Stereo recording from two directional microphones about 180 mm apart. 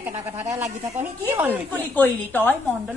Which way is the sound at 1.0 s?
10° right (ahead or behind).